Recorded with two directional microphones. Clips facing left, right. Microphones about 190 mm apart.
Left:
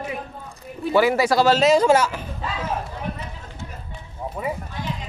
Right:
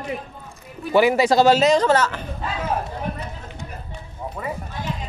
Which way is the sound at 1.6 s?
5° left (ahead or behind).